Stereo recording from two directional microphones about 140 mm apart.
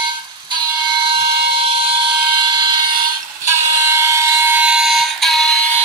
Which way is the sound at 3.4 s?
20° right (ahead or behind).